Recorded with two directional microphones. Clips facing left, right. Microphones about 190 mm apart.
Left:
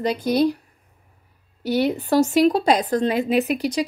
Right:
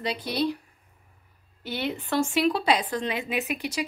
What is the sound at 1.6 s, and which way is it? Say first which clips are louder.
A woman's voice: left 10 dB; 40° left (ahead or behind).